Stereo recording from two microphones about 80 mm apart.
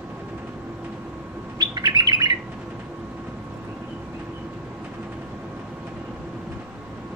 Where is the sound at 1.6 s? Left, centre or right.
Right.